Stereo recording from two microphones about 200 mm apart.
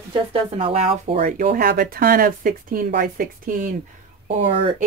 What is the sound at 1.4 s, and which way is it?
Speech, 50° right (ahead or behind).